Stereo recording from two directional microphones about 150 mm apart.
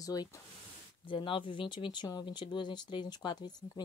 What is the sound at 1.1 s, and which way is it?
Speech, 35° left (ahead or behind).